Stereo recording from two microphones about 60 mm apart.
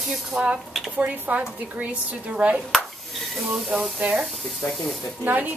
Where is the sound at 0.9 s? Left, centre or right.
Right.